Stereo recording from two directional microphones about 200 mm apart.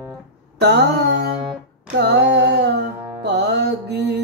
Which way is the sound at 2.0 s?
55° right (ahead or behind).